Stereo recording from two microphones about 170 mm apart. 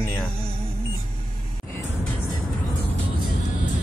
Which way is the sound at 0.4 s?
35° right (ahead or behind).